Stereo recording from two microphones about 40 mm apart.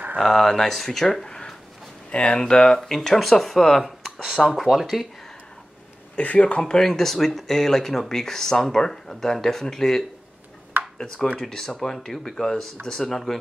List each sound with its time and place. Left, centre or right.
0.2 s speech: centre
2.0 s speech: left
2.8 s speech: centre
4.7 s speech: centre
6.1 s speech: left
6.6 s speech: centre
11.3 s speech: centre
13.1 s speech: centre